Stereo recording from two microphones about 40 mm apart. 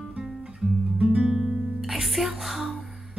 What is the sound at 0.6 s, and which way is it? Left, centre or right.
Guitar, centre.